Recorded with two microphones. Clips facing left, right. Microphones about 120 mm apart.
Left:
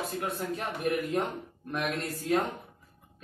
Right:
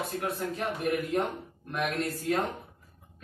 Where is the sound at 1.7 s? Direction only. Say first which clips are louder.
Right 2 dB; centre (ahead or behind).